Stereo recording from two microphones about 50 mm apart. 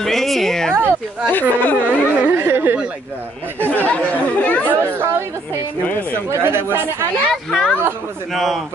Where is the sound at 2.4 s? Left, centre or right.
Right.